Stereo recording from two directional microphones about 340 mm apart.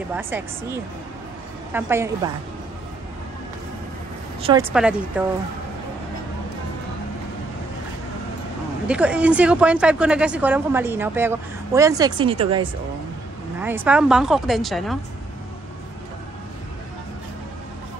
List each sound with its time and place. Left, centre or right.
0.1 s speech: centre
4.4 s speech: centre
4.7 s a woman's voice: centre
8.8 s a woman's voice: centre
13.6 s a woman's voice: centre